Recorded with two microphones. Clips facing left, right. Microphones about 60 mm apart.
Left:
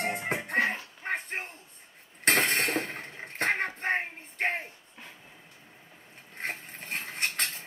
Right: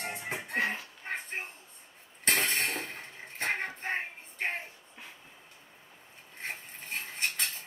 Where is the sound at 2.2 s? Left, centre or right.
Left.